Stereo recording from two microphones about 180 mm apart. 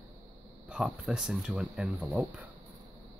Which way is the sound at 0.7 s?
5° right (ahead or behind).